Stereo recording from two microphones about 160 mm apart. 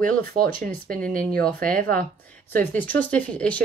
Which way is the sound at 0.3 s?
70° right (ahead or behind).